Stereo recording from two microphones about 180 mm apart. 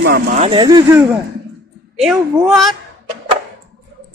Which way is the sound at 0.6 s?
20° right (ahead or behind).